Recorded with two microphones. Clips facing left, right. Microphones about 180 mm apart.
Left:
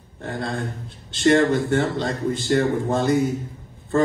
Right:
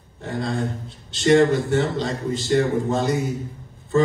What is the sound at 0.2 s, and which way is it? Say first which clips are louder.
A man's voice: right 2 dB; 55° left (ahead or behind).